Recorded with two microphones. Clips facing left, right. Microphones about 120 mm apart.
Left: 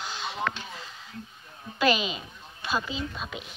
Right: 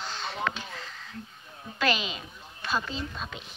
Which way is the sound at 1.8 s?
15° left (ahead or behind).